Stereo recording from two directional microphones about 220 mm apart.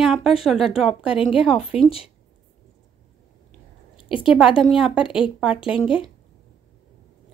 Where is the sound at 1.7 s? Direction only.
25° left (ahead or behind).